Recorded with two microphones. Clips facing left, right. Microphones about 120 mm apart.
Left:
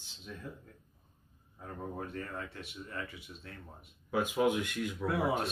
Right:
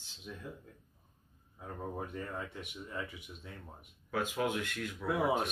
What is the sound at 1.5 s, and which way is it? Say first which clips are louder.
Speech: even; 10° right (ahead or behind).